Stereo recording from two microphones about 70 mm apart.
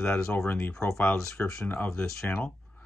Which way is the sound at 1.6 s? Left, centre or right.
Left.